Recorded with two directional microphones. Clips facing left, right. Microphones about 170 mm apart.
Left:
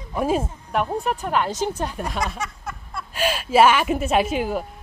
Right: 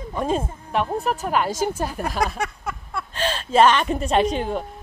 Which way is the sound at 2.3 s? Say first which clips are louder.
Right 3 dB; 65° right (ahead or behind).